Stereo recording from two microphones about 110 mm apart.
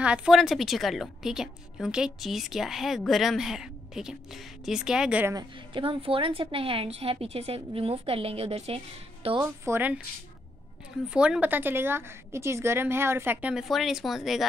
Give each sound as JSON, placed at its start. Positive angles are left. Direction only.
{"t": 0.0, "sound": "a woman's voice", "side_deg": -10}
{"t": 5.8, "sound": "a woman's voice", "side_deg": -55}
{"t": 9.4, "sound": "a woman's voice", "side_deg": -20}
{"t": 11.1, "sound": "a woman's voice", "side_deg": -10}
{"t": 13.7, "sound": "a woman's voice", "side_deg": 0}